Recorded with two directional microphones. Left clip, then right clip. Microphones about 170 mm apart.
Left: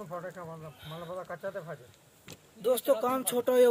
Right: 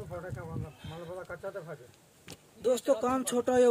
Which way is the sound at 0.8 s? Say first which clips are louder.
Left 1 dB; 10° right (ahead or behind).